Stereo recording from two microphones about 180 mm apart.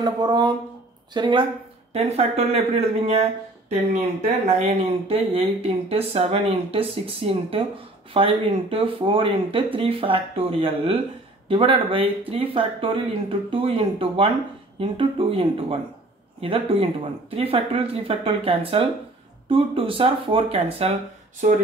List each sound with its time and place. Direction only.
0.0 s speech: 25° right (ahead or behind)
4.3 s speech: 40° right (ahead or behind)